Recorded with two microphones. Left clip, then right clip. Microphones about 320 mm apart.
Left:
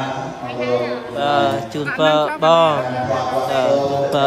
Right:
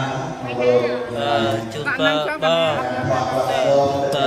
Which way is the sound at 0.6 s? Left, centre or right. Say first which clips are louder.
Right 3 dB; left.